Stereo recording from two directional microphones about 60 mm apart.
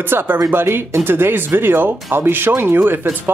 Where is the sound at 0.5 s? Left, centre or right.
Right.